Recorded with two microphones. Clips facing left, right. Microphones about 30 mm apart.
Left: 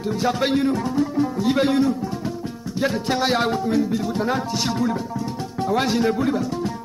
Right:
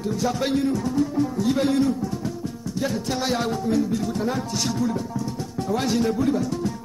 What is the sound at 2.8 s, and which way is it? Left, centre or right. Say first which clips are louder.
Speech: left 4 dB; left.